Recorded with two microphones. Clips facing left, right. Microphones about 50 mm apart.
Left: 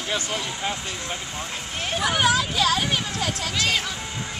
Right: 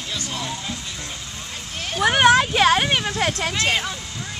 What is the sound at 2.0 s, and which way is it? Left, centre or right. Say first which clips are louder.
Speech: right 6 dB; right.